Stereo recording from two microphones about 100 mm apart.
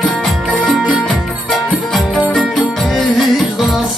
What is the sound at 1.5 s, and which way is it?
Music, centre (ahead or behind).